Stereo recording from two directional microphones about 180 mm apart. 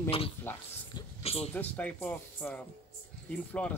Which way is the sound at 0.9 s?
35° left (ahead or behind).